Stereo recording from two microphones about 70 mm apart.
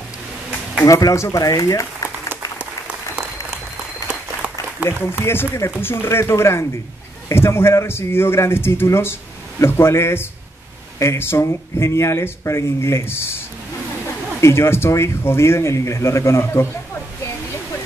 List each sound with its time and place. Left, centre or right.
0.8 s speech: left
2.0 s applause: right
4.4 s a sound: centre
4.8 s speech: left
14.4 s speech: left